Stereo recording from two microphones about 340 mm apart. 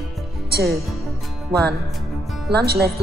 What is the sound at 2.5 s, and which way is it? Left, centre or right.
Speech, right.